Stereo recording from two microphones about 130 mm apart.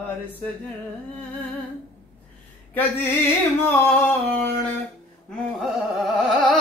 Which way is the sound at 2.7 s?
15° left (ahead or behind).